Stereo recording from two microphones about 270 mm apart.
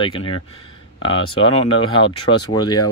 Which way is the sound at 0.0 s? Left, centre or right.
Centre.